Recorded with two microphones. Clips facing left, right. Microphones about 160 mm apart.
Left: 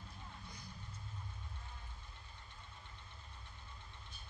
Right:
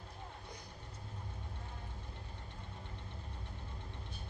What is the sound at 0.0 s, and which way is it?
Vehicle, 60° right (ahead or behind).